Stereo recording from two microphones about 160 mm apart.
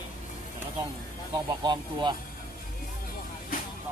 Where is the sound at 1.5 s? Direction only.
25° right (ahead or behind).